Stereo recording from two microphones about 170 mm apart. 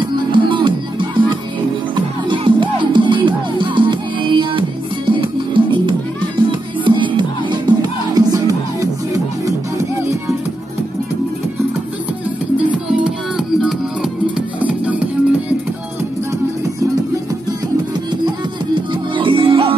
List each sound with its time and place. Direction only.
0.0 s music: 30° right (ahead or behind)
14.3 s music: 10° right (ahead or behind)
18.8 s music: 30° right (ahead or behind)